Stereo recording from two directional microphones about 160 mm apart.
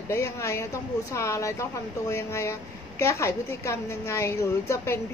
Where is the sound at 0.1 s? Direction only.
15° left (ahead or behind).